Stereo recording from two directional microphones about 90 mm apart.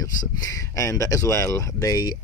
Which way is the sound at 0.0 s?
40° left (ahead or behind).